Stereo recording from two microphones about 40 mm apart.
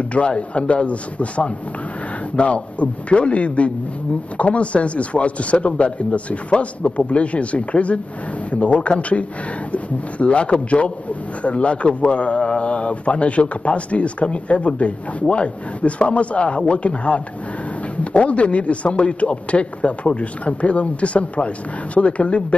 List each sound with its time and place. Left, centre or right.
0.1 s a man's voice: left